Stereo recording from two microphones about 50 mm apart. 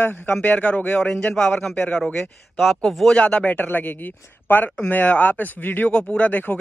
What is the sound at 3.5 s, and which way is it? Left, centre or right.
A man's voice, left.